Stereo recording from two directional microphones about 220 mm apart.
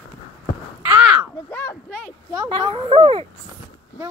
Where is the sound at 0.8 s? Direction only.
10° right (ahead or behind).